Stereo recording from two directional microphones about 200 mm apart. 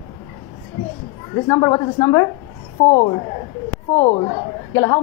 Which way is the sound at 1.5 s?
15° left (ahead or behind).